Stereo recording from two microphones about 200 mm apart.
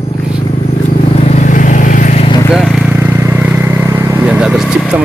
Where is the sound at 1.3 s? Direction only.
40° left (ahead or behind).